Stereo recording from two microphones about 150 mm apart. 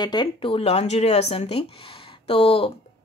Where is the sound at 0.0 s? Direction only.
30° left (ahead or behind).